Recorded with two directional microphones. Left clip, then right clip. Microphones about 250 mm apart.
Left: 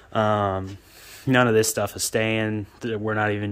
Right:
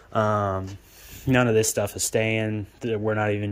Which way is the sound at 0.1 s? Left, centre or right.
Centre.